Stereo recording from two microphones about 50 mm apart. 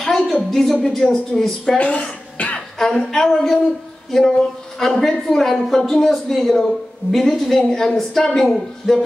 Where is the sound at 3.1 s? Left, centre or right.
Centre.